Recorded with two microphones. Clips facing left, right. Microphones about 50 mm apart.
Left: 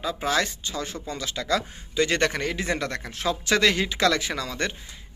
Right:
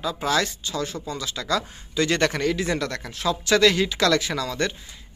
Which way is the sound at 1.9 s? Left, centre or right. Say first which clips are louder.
Right 1 dB; centre.